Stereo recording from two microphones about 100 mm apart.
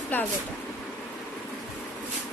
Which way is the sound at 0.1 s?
20° left (ahead or behind).